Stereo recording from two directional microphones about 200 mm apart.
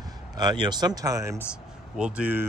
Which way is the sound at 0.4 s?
20° right (ahead or behind).